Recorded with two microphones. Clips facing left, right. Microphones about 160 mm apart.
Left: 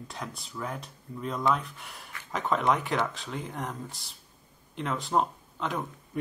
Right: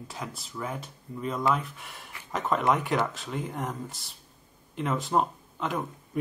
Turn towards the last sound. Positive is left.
turn(degrees=0)  # may be behind; listen again after turning